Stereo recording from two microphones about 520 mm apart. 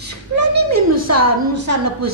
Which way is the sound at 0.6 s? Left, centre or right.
Right.